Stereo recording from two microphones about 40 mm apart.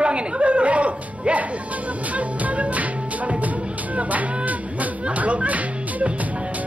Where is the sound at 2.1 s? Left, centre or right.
Right.